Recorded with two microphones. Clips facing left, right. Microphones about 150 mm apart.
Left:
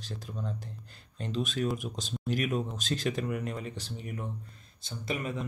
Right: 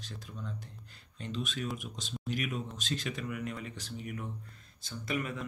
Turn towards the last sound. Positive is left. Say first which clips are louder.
# left 1 dB
turn(degrees=25)  # may be behind; listen again after turning